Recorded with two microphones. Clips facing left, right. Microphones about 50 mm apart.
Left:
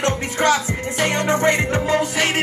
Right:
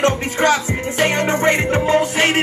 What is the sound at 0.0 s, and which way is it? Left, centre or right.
Music, right.